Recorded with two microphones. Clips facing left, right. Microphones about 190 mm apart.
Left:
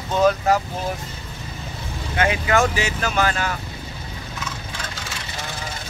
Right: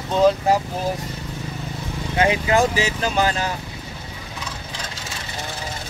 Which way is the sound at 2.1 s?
30° right (ahead or behind).